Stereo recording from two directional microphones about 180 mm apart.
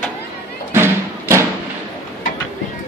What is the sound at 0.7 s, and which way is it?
Music, 10° right (ahead or behind).